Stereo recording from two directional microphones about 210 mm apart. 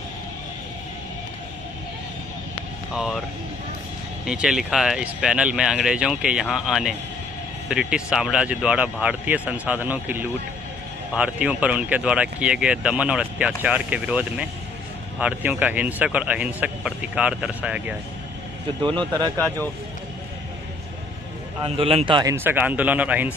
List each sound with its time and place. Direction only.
2.9 s speech: 5° right (ahead or behind)
4.3 s speech: 5° right (ahead or behind)
18.8 s a man's voice: 20° right (ahead or behind)
21.6 s a man's voice: 25° right (ahead or behind)
22.3 s speech: 10° right (ahead or behind)